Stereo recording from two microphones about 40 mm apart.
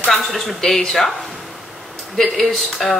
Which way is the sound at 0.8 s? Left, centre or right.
Centre.